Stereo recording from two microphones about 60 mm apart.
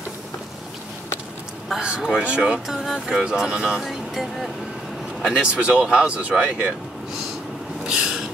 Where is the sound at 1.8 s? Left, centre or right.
Centre.